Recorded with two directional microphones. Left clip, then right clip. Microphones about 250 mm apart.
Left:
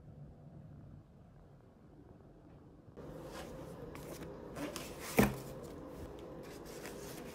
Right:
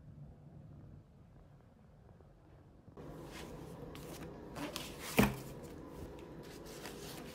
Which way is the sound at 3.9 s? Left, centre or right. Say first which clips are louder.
Left 1 dB; centre.